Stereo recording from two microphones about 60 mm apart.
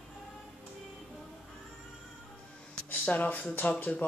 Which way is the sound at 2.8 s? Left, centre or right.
Left.